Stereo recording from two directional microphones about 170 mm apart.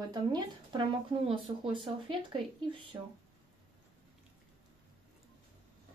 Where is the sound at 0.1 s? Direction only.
25° right (ahead or behind).